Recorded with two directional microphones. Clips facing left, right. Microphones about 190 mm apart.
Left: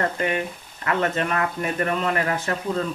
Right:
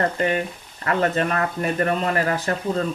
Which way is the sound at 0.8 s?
40° right (ahead or behind).